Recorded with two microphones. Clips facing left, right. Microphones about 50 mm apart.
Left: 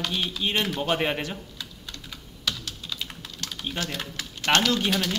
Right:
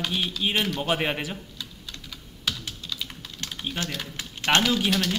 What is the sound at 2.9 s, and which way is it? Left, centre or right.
Typing, centre.